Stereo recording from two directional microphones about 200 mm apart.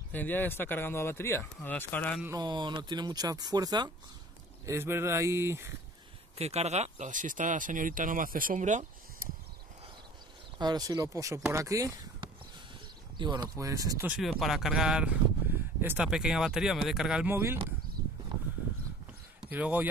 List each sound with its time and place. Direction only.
0.1 s speech: 10° left (ahead or behind)
2.2 s speech: 20° right (ahead or behind)
6.3 s speech: 30° right (ahead or behind)
10.6 s speech: 20° right (ahead or behind)
19.5 s speech: 10° right (ahead or behind)